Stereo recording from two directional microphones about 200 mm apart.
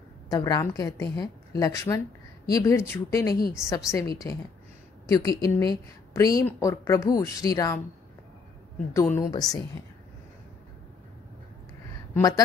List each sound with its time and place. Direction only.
0.3 s speech: 20° left (ahead or behind)
8.9 s speech: 15° left (ahead or behind)
12.1 s speech: 15° left (ahead or behind)